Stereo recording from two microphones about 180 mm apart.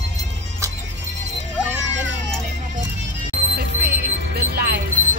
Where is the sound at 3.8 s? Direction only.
60° right (ahead or behind).